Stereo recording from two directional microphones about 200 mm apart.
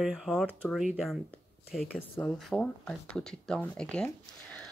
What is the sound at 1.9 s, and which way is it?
Speech, 5° left (ahead or behind).